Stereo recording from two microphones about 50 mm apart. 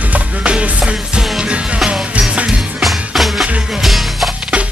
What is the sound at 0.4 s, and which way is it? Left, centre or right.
Music, right.